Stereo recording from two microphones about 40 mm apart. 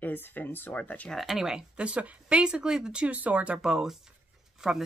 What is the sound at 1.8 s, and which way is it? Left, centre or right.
Speech, right.